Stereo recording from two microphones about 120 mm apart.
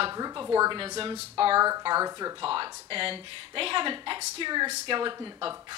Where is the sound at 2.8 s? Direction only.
50° right (ahead or behind).